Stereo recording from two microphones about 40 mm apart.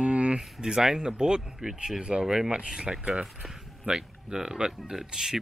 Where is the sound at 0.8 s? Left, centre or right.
Centre.